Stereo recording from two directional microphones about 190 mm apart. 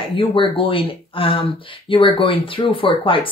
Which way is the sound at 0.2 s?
25° left (ahead or behind).